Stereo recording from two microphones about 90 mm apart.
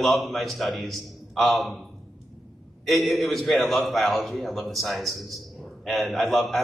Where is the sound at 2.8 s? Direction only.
Centre (ahead or behind).